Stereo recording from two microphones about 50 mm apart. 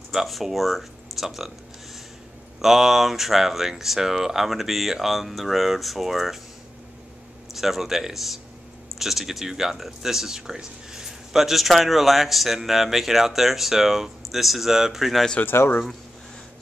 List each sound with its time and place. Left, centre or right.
0.1 s speech: centre
2.6 s speech: centre
7.5 s speech: centre
15.4 s speech: left